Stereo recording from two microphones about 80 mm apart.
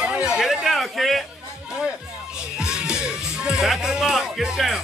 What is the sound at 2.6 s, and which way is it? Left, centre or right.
Speech, centre.